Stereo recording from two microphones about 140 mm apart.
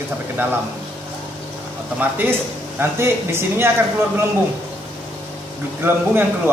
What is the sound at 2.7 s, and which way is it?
Speech, 15° right (ahead or behind).